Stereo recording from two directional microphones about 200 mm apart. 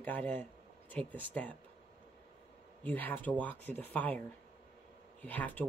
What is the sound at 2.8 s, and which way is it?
Speech, 10° left (ahead or behind).